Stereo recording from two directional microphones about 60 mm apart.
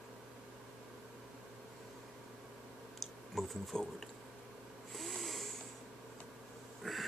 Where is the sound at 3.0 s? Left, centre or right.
Centre.